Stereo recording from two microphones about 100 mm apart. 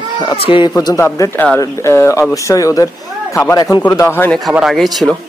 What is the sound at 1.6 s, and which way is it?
Speech, 30° left (ahead or behind).